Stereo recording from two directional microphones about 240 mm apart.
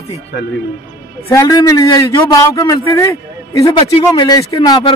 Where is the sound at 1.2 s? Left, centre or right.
Centre.